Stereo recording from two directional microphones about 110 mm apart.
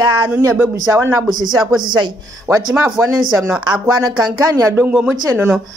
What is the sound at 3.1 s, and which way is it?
Speech, 25° right (ahead or behind).